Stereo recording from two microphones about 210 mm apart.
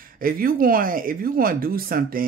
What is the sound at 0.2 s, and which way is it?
Speech, 45° right (ahead or behind).